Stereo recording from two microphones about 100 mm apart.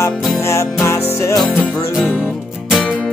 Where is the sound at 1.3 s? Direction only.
Centre (ahead or behind).